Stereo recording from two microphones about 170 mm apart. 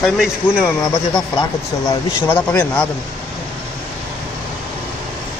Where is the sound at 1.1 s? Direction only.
25° left (ahead or behind).